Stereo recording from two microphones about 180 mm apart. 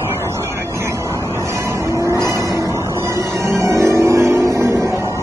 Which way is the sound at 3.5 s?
15° right (ahead or behind).